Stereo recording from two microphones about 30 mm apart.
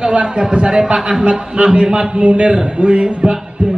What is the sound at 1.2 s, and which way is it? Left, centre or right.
A man's voice, right.